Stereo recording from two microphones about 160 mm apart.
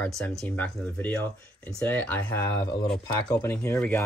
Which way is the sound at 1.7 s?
10° left (ahead or behind).